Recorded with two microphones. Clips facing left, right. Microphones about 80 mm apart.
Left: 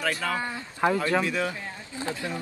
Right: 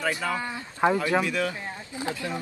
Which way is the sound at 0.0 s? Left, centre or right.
Centre.